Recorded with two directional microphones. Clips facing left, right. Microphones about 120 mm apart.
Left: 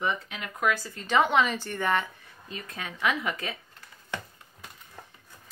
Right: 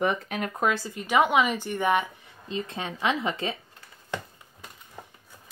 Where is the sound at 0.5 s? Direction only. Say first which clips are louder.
Even; 30° right (ahead or behind).